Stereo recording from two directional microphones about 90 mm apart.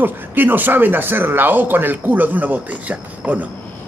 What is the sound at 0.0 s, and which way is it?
A man's voice, 20° right (ahead or behind).